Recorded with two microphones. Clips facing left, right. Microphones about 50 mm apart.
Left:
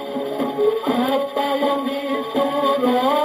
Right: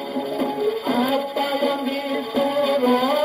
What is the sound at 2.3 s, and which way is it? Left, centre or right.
Music, centre.